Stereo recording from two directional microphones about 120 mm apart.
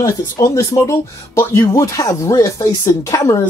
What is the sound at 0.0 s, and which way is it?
Speech, 25° left (ahead or behind).